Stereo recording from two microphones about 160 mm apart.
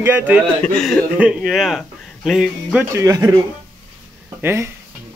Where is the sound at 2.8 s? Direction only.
20° right (ahead or behind).